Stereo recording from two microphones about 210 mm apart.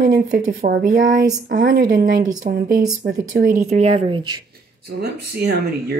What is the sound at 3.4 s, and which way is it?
Speech, 35° right (ahead or behind).